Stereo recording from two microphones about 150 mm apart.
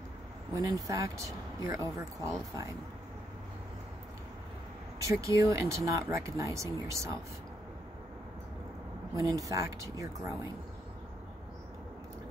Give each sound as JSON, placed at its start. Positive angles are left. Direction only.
{"t": 0.5, "sound": "speech", "side_deg": -20}
{"t": 5.0, "sound": "speech", "side_deg": -20}
{"t": 9.1, "sound": "speech", "side_deg": -20}